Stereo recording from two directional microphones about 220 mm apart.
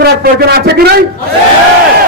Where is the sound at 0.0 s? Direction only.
45° right (ahead or behind).